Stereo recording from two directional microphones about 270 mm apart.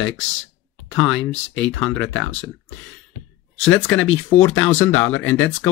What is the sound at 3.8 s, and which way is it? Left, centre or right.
Speech, centre.